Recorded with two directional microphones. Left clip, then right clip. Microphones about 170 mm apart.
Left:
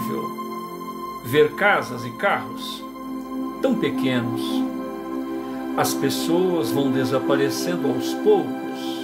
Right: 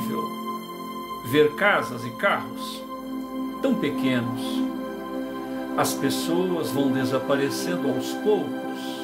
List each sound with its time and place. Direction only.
1.3 s speech: 10° left (ahead or behind)
3.6 s speech: 15° left (ahead or behind)
5.8 s speech: 15° left (ahead or behind)